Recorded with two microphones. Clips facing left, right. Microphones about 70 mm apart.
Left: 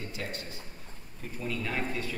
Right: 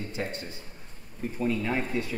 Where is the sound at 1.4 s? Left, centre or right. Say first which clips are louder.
Right 5 dB; right.